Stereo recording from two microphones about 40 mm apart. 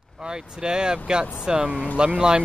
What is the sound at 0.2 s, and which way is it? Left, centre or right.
Speech, centre.